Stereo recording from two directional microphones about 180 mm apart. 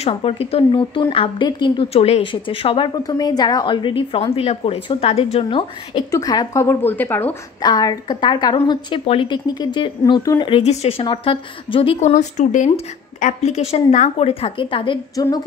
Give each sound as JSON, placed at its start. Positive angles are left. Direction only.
{"t": 0.0, "sound": "a woman's voice", "side_deg": 30}
{"t": 7.6, "sound": "a woman's voice", "side_deg": 20}
{"t": 10.6, "sound": "a woman's voice", "side_deg": 40}